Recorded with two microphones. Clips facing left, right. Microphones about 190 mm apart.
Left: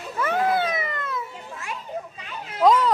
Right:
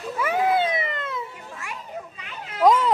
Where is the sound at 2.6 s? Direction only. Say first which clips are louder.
Even; 20° right (ahead or behind).